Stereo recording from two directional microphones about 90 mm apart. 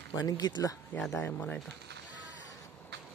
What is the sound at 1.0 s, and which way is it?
Speech, 10° left (ahead or behind).